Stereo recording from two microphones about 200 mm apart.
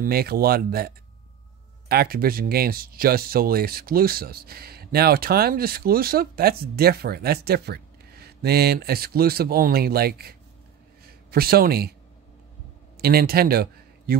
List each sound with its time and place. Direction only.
0.0 s speech: 50° right (ahead or behind)
13.0 s speech: 50° right (ahead or behind)